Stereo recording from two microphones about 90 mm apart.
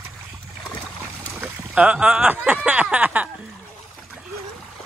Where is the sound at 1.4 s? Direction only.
15° right (ahead or behind).